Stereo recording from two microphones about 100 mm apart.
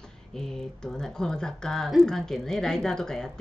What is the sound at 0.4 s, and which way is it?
A woman's voice, 5° left (ahead or behind).